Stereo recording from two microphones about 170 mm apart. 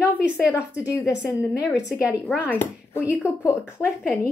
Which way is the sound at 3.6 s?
10° right (ahead or behind).